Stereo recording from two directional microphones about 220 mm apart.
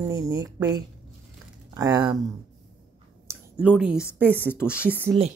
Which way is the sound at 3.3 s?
5° right (ahead or behind).